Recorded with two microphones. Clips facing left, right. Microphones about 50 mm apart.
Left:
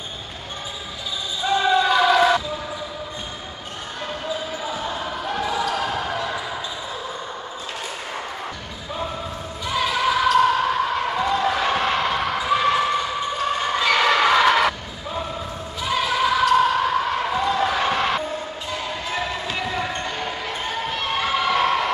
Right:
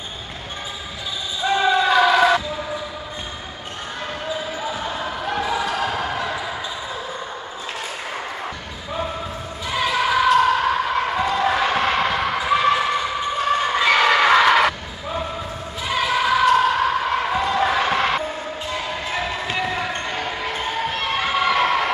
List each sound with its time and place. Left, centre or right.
1.5 s basketball bounce: centre
4.7 s basketball bounce: centre
9.8 s basketball bounce: centre
13.7 s a sound: centre
16.0 s basketball bounce: centre
19.5 s basketball bounce: centre
20.8 s a sound: centre